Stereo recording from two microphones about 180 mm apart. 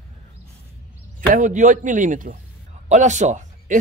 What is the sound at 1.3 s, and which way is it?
Speech, 45° right (ahead or behind).